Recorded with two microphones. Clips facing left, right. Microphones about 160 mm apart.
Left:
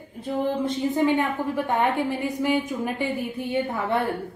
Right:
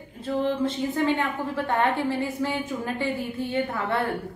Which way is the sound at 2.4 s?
15° left (ahead or behind).